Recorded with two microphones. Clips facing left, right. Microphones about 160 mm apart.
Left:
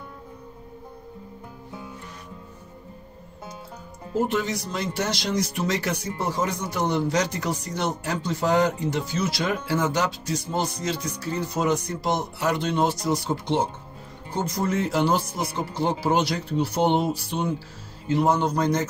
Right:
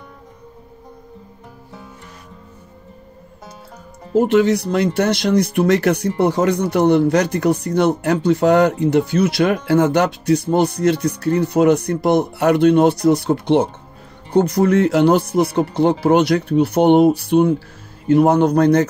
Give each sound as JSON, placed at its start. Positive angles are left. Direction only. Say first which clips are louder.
{"t": 4.1, "sound": "speech", "louder": "right 11 dB", "side_deg": -70}